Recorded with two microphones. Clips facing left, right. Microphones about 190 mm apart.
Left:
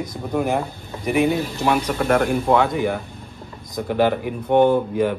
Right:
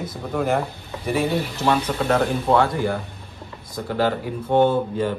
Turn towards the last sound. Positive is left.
turn(degrees=15)  # may be behind; listen again after turning